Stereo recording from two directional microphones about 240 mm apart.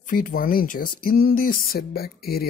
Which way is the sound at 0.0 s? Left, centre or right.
Left.